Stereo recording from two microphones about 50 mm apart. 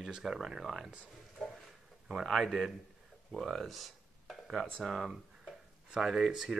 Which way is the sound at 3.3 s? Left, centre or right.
Centre.